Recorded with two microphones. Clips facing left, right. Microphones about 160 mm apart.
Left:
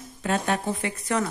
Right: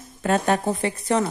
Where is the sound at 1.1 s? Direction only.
30° right (ahead or behind).